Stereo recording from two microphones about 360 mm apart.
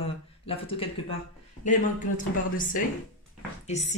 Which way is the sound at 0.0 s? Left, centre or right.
Centre.